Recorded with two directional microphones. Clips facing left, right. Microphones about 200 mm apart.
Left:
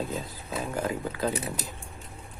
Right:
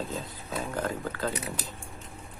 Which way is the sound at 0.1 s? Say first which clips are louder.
Left 1 dB; 5° left (ahead or behind).